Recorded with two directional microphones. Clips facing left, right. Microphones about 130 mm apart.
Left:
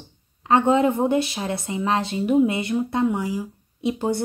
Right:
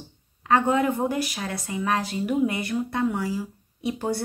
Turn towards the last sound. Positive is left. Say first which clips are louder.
# left 4 dB
turn(degrees=20)  # may be behind; listen again after turning